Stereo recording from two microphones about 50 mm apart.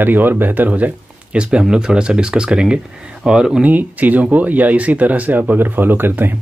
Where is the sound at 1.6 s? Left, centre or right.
Centre.